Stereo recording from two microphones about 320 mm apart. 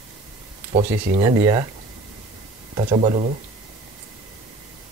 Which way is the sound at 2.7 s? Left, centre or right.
Centre.